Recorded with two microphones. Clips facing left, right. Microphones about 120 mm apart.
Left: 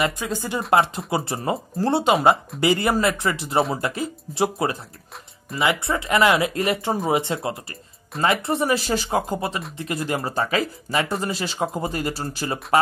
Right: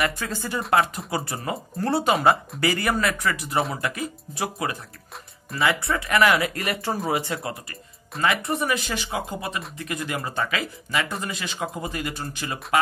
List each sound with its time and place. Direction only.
0.0 s speech: 15° left (ahead or behind); by 12.5 s 35° left (ahead or behind)